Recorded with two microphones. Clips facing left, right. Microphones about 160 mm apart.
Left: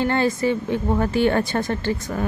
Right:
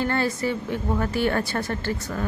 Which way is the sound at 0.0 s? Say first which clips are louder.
Left 4 dB; 20° left (ahead or behind).